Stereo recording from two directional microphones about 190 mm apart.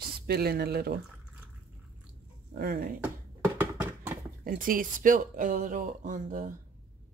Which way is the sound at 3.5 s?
10° right (ahead or behind).